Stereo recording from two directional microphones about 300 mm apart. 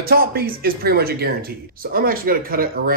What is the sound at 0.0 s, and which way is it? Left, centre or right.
Speech, right.